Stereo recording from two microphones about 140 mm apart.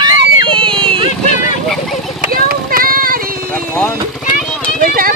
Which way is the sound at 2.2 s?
90° right.